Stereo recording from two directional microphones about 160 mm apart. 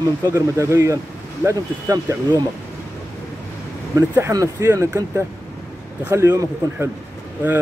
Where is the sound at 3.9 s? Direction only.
20° right (ahead or behind).